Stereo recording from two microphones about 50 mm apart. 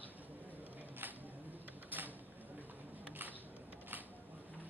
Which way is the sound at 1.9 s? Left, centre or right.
Right.